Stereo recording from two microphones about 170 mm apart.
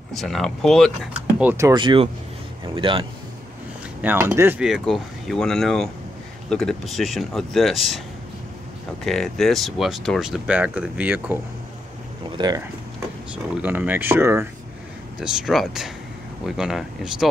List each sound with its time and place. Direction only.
0.1 s speech: centre (ahead or behind)
1.4 s speech: 10° right (ahead or behind)
1.7 s speech: 30° right (ahead or behind)
4.0 s speech: 10° right (ahead or behind)
9.0 s speech: centre (ahead or behind)
12.4 s speech: 25° right (ahead or behind)
13.3 s speech: 10° right (ahead or behind)
15.1 s speech: 5° right (ahead or behind)